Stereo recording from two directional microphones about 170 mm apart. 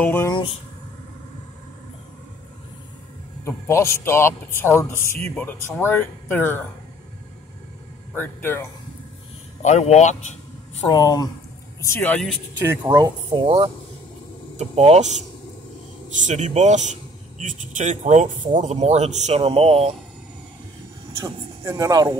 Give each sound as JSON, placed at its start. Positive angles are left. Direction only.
{"t": 0.0, "sound": "a man's voice", "side_deg": 10}
{"t": 0.3, "sound": "speech", "side_deg": 30}
{"t": 3.4, "sound": "a man's voice", "side_deg": 15}
{"t": 8.1, "sound": "speech", "side_deg": 10}
{"t": 9.6, "sound": "speech", "side_deg": 40}
{"t": 10.9, "sound": "speech", "side_deg": 25}
{"t": 11.8, "sound": "a man's voice", "side_deg": 10}
{"t": 12.9, "sound": "speech", "side_deg": -25}
{"t": 14.6, "sound": "a man's voice", "side_deg": -40}
{"t": 21.2, "sound": "speech", "side_deg": -20}